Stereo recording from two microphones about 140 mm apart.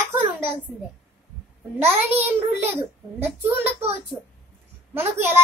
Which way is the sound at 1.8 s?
15° right (ahead or behind).